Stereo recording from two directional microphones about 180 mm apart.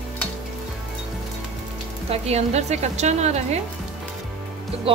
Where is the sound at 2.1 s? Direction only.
35° right (ahead or behind).